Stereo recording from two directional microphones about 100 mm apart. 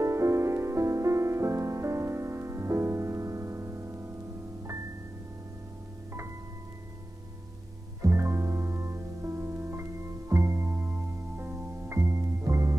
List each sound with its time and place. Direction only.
0.0 s music: 30° right (ahead or behind)
8.0 s music: 25° right (ahead or behind)